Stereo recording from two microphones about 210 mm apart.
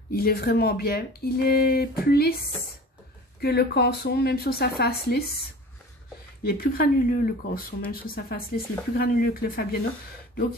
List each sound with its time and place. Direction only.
0.1 s speech: 45° left (ahead or behind)
6.4 s speech: 45° left (ahead or behind)